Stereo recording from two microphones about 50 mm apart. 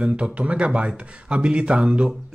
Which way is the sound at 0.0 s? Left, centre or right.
Right.